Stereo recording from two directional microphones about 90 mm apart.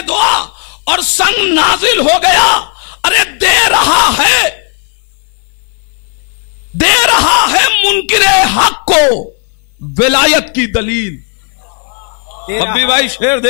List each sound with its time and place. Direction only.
0.0 s speech: 15° left (ahead or behind)
6.8 s speech: 15° left (ahead or behind)
12.3 s speech: 15° left (ahead or behind)